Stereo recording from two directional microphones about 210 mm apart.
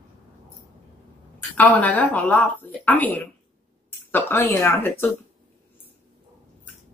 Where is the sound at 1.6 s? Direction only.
5° left (ahead or behind).